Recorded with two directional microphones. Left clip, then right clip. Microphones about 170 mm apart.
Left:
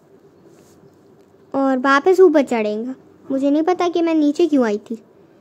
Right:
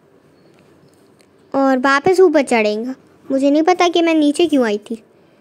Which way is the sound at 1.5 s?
15° right (ahead or behind).